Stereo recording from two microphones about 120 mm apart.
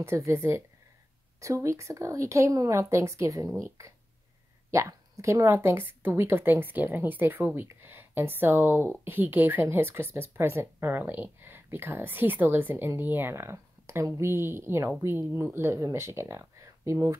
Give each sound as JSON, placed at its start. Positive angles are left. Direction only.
{"t": 0.0, "sound": "speech", "side_deg": -25}